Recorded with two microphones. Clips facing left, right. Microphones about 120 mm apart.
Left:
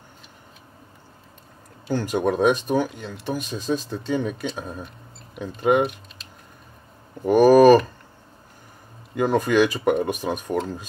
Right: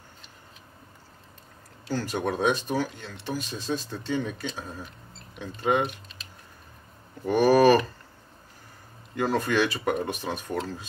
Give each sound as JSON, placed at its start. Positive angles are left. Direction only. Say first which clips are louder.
{"t": 1.9, "sound": "speech", "louder": "left 6 dB", "side_deg": 15}
{"t": 3.4, "sound": "speech", "louder": "left 5 dB", "side_deg": 45}
{"t": 4.1, "sound": "speech", "louder": "left 4 dB", "side_deg": 10}
{"t": 4.8, "sound": "speech", "louder": "left 3 dB", "side_deg": 5}
{"t": 7.2, "sound": "speech", "louder": "left 6 dB", "side_deg": 15}
{"t": 9.1, "sound": "speech", "louder": "left 5 dB", "side_deg": 15}